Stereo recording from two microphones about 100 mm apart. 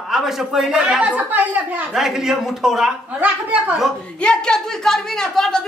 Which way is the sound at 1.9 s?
5° right (ahead or behind).